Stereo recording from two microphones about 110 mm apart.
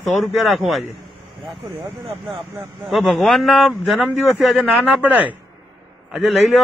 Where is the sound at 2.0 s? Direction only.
60° right (ahead or behind).